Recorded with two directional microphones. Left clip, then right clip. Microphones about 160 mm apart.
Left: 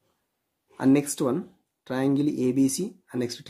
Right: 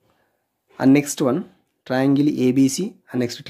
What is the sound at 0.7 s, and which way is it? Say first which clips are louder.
Speech: right 6 dB; 25° right (ahead or behind).